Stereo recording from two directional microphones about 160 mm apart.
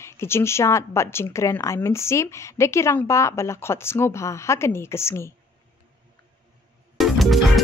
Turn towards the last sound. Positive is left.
turn(degrees=0)  # may be behind; listen again after turning